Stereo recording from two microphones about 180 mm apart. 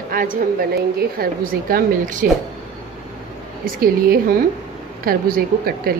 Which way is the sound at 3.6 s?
55° right (ahead or behind).